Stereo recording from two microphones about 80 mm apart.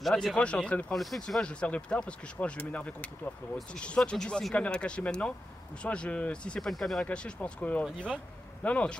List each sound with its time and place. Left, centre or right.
0.0 s speech: centre
6.7 s speech: centre
7.1 s speech: centre